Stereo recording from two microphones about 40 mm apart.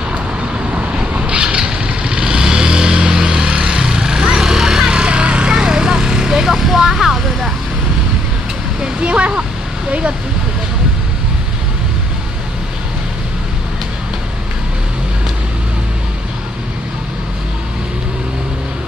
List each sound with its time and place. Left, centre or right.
0.7 s vehicle: right
5.6 s vehicle: centre
8.8 s a sound: right